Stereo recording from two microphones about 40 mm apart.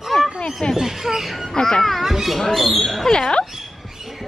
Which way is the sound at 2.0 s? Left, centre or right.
Centre.